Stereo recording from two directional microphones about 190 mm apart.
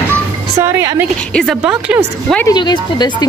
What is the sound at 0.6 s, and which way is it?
A woman's voice, 15° right (ahead or behind).